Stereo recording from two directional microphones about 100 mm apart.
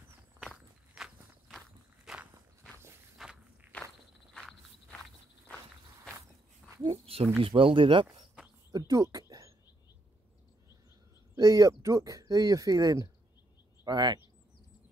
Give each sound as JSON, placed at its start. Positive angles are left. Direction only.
{"t": 0.4, "sound": "walk", "side_deg": -5}
{"t": 3.7, "sound": "walk", "side_deg": 15}
{"t": 6.9, "sound": "a sound", "side_deg": -70}
{"t": 7.4, "sound": "speech", "side_deg": -65}
{"t": 8.7, "sound": "speech", "side_deg": -35}
{"t": 11.3, "sound": "speech", "side_deg": -35}